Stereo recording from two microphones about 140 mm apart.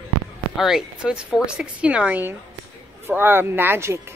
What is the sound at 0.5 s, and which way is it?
Speech, 5° right (ahead or behind).